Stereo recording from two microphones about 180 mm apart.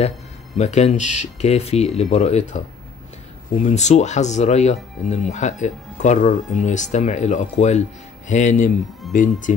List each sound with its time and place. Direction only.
0.6 s speech: 40° left (ahead or behind)